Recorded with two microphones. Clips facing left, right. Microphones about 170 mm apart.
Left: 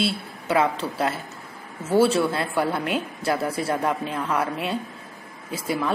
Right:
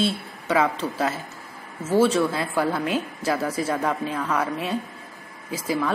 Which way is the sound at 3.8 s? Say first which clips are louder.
Even; centre (ahead or behind).